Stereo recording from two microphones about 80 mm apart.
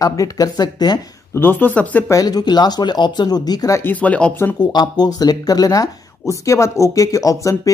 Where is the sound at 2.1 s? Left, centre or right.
Left.